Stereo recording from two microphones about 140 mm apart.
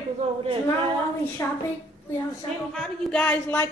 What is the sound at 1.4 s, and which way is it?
Speech, 20° left (ahead or behind).